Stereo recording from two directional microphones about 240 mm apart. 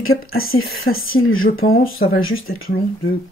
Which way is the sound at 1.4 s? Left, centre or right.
Left.